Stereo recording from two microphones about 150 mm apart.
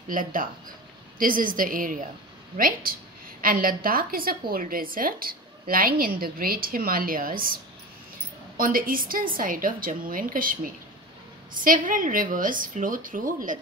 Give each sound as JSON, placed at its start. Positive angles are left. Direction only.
{"t": 0.1, "sound": "a woman's voice", "side_deg": -65}